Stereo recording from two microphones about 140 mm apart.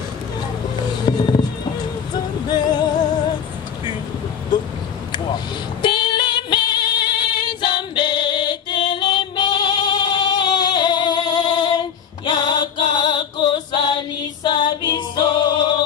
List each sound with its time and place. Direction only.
1.0 s music: 35° left (ahead or behind)
2.4 s music: 30° left (ahead or behind)
5.1 s female singing: 35° left (ahead or behind)
12.3 s music: 35° left (ahead or behind)